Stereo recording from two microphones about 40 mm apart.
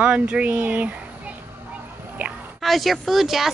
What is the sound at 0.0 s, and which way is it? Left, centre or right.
Speech, right.